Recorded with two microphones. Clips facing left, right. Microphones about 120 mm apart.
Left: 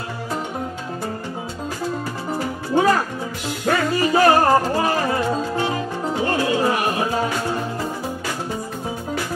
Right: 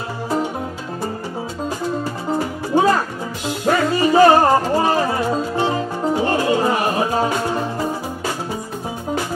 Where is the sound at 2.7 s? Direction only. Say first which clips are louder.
Right 1 dB; 20° right (ahead or behind).